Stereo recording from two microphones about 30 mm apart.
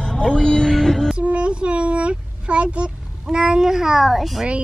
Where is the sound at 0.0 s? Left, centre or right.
Left.